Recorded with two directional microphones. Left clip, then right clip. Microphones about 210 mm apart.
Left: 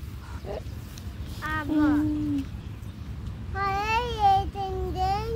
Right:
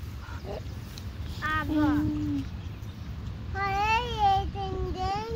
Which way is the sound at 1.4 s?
45° left (ahead or behind).